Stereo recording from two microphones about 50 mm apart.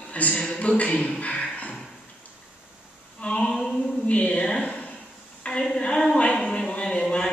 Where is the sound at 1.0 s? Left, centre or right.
Left.